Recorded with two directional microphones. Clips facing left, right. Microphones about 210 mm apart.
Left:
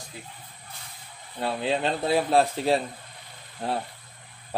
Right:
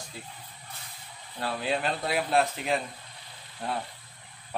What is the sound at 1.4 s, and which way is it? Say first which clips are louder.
Speech: left 3 dB; 25° left (ahead or behind).